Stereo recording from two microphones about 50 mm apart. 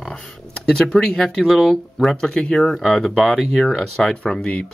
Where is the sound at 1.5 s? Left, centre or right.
Centre.